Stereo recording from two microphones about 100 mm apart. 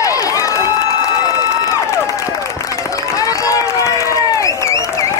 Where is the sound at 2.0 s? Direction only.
35° left (ahead or behind).